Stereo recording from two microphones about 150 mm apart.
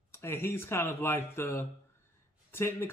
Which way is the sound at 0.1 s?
15° left (ahead or behind).